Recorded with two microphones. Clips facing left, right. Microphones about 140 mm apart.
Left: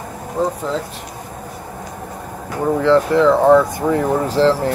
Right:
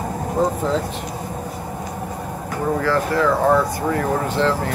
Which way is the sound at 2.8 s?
20° left (ahead or behind).